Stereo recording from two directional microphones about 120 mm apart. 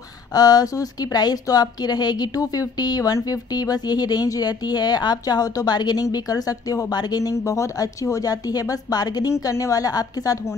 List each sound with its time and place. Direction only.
0.3 s a woman's voice: 35° left (ahead or behind)